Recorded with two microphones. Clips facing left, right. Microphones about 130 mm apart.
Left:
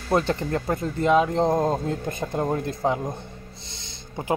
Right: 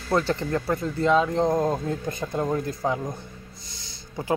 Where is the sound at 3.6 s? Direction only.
25° left (ahead or behind).